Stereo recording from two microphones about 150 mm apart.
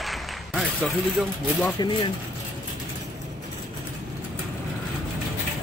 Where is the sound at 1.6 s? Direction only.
30° left (ahead or behind).